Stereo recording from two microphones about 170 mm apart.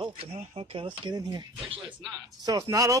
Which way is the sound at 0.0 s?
30° right (ahead or behind).